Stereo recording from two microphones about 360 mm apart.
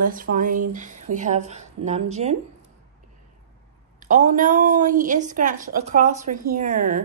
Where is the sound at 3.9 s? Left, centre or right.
Right.